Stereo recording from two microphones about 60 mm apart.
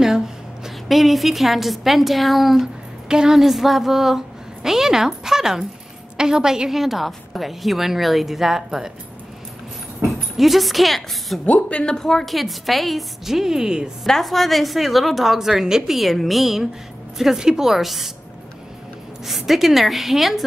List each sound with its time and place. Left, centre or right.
0.7 s a woman's voice: centre
10.0 s dog: right
10.3 s a woman's voice: centre
11.4 s a woman's voice: left; by 13.8 s centre
14.0 s a woman's voice: centre
19.2 s a woman's voice: centre